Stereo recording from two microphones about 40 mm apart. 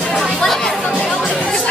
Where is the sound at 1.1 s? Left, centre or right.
Centre.